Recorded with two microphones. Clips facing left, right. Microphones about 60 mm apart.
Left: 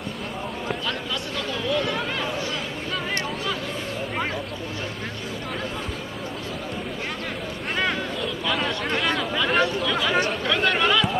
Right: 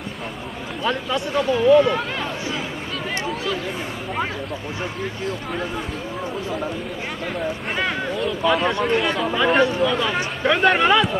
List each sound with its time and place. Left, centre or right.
0.8 s speech: right
8.8 s speech: centre
10.4 s speech: right